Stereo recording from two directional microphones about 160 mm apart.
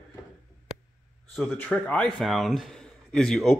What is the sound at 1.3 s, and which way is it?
Speech, 5° left (ahead or behind).